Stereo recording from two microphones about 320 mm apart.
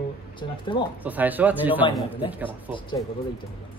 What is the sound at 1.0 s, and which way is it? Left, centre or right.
Speech, centre.